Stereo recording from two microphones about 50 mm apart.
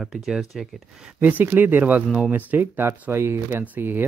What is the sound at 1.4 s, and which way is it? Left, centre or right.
Speech, right.